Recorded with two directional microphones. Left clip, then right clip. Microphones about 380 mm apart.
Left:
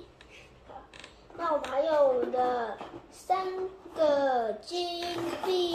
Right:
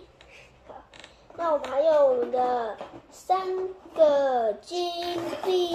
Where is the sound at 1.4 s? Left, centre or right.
Centre.